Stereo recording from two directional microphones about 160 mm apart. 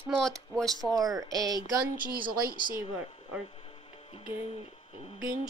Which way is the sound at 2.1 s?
65° right (ahead or behind).